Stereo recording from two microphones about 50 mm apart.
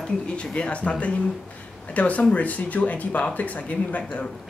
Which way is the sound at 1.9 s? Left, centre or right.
Left.